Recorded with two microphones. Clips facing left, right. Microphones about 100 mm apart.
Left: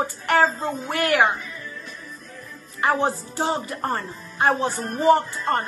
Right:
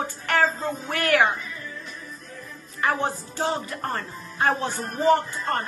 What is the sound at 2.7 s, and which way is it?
Music, 15° left (ahead or behind).